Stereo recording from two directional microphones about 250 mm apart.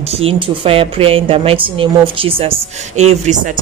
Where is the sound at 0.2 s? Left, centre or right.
Right.